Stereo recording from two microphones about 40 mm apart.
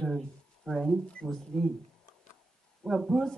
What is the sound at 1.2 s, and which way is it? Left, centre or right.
Speech, centre.